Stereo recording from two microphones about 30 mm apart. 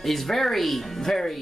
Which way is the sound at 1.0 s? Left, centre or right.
Centre.